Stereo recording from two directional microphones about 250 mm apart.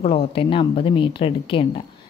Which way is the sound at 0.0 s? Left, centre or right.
Left.